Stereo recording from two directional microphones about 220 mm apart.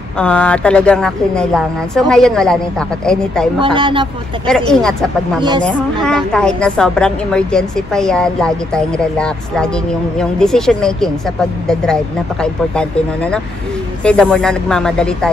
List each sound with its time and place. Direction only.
0.2 s a woman's voice: 5° left (ahead or behind)
3.5 s speech: 20° right (ahead or behind)
4.5 s a woman's voice: 5° left (ahead or behind)